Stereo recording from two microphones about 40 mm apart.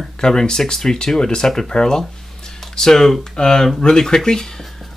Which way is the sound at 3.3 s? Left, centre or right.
Centre.